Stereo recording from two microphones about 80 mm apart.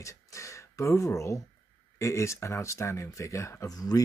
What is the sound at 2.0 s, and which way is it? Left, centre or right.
Speech, left.